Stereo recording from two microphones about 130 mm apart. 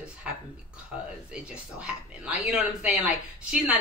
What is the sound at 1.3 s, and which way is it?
A man's voice, 5° right (ahead or behind).